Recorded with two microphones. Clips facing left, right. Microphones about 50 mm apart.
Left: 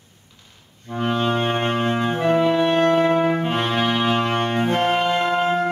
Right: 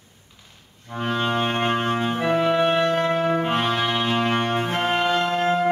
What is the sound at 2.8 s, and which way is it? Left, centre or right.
Music, left.